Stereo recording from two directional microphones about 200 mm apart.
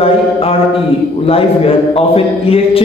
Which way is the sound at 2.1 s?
30° left (ahead or behind).